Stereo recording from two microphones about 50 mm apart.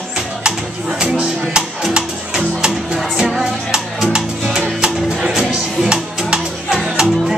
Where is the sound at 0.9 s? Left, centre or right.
Centre.